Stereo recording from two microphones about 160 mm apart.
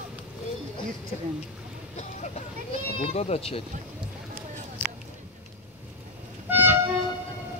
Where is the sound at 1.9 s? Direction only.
45° left (ahead or behind).